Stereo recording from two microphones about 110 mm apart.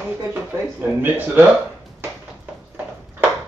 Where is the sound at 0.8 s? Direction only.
15° right (ahead or behind).